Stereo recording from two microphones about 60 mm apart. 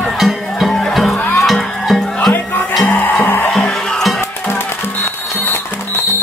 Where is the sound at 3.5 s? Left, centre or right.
Centre.